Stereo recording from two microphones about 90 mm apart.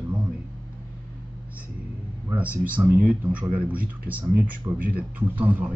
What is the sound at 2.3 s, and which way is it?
Speech, 15° right (ahead or behind).